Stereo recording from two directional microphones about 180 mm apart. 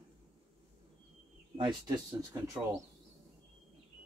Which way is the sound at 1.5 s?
25° right (ahead or behind).